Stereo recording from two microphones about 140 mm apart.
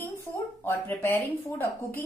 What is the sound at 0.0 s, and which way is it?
A woman's voice, 20° left (ahead or behind).